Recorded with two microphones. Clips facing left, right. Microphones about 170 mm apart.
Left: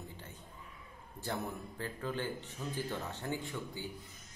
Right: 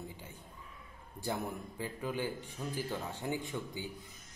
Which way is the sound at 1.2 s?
10° right (ahead or behind).